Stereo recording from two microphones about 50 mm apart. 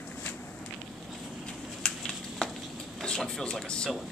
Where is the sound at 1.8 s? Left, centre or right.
Centre.